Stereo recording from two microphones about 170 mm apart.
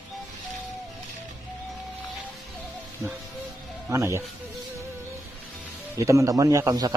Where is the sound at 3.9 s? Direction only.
15° right (ahead or behind).